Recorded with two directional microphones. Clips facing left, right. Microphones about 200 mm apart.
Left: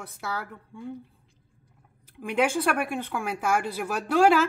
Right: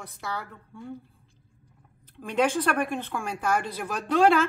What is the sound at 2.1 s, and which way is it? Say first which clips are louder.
Speech: even; 10° left (ahead or behind).